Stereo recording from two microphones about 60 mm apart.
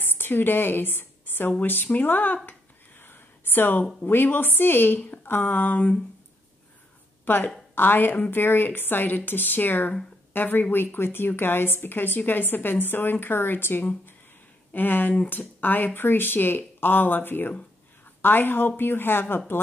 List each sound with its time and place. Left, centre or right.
0.0 s a woman's voice: left
3.0 s a sound: left
4.0 s a woman's voice: left
7.2 s a woman's voice: left